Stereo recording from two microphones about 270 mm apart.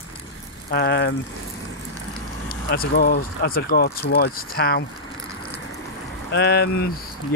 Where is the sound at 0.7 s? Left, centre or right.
Left.